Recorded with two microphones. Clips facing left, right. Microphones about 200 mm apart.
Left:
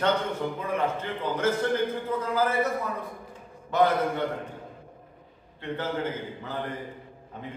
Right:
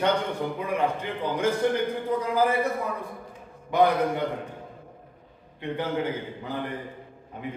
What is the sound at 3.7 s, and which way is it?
Speech, 15° right (ahead or behind).